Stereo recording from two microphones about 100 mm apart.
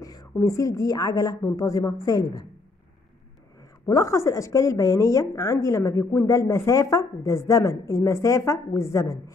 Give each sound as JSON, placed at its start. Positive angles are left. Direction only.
{"t": 0.0, "sound": "a woman's voice", "side_deg": 40}
{"t": 3.9, "sound": "a woman's voice", "side_deg": 30}